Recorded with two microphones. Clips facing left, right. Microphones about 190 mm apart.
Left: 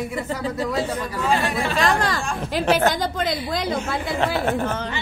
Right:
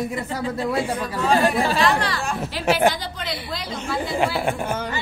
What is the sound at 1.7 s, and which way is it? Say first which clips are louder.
A woman's voice: even; 45° left (ahead or behind).